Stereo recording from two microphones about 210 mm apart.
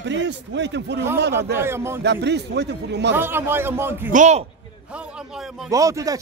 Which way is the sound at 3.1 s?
10° right (ahead or behind).